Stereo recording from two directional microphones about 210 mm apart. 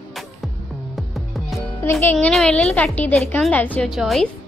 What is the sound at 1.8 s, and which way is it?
Speech, 10° left (ahead or behind).